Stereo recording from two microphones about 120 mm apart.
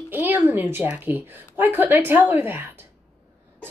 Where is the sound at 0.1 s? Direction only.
15° right (ahead or behind).